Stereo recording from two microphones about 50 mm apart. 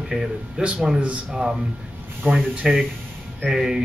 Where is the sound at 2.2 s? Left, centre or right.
Right.